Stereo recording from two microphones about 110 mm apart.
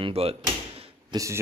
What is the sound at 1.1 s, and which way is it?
Speech, 30° right (ahead or behind).